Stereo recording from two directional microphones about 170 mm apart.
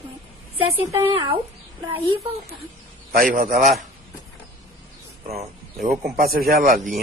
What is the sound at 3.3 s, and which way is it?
Speech, 55° right (ahead or behind).